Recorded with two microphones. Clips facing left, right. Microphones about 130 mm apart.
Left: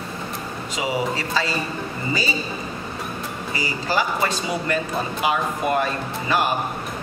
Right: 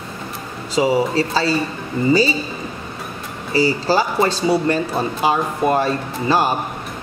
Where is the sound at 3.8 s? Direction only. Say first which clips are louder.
Right 5 dB; 30° right (ahead or behind).